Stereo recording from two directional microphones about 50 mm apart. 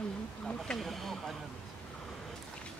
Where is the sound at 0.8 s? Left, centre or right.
Centre.